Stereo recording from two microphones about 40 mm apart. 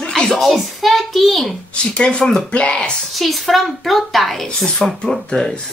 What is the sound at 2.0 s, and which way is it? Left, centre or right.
Speech, left.